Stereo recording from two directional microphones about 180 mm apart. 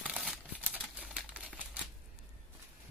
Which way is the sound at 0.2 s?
5° right (ahead or behind).